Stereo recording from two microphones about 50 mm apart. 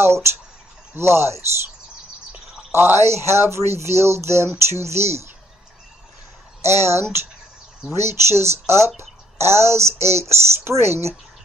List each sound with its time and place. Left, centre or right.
0.0 s speech: right
2.7 s speech: right
6.6 s speech: right